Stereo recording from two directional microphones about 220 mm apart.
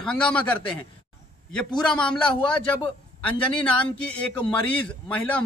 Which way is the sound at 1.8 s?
5° left (ahead or behind).